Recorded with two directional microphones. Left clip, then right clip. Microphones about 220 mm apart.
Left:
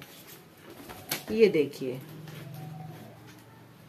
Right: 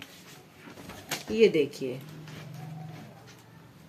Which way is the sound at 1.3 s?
Centre (ahead or behind).